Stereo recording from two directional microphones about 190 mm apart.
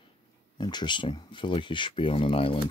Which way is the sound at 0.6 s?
25° left (ahead or behind).